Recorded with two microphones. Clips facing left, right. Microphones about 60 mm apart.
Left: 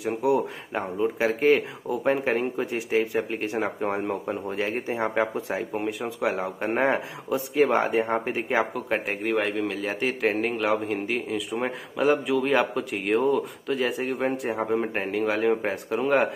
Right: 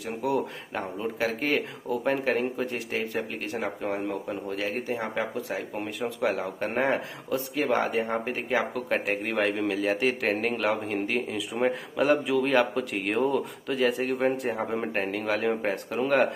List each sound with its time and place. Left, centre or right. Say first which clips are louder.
0.0 s speech: left 4 dB; centre
3.3 s speech: left 4 dB; left
5.7 s speech: left 3 dB; centre
7.6 s speech: left 4 dB; left
8.7 s a man's voice: even; centre